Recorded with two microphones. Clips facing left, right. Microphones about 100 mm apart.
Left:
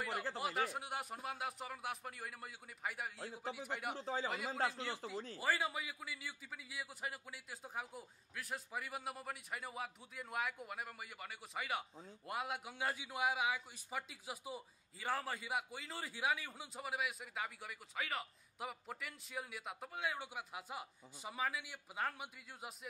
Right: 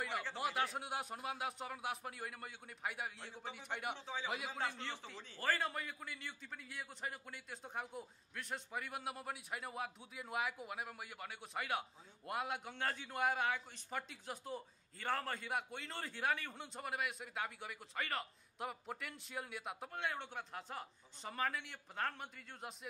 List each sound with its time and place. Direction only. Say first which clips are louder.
0.4 s a man's voice: right 3 dB; centre (ahead or behind)
3.9 s a man's voice: left 4 dB; 40° left (ahead or behind)
4.3 s a man's voice: left 2 dB; centre (ahead or behind)